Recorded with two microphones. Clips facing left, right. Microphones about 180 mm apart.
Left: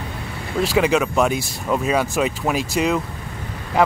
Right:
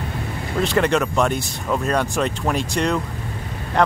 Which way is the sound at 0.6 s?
5° left (ahead or behind).